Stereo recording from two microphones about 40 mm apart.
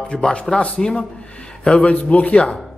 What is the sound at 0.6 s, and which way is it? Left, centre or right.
A man's voice, left.